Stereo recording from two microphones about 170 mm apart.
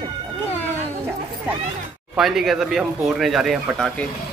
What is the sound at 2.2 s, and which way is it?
Speech, centre (ahead or behind).